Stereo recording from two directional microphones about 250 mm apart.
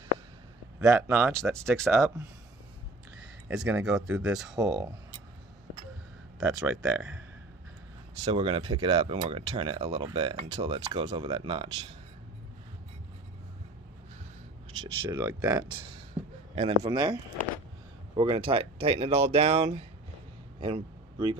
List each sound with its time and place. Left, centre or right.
0.7 s speech: centre
1.9 s speech: centre
3.4 s speech: centre
4.6 s speech: centre
6.4 s speech: centre
8.3 s speech: right
14.8 s speech: centre
16.2 s a sound: centre
16.5 s a man's voice: centre